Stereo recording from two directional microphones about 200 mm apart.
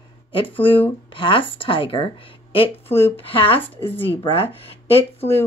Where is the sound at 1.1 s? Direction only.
25° left (ahead or behind).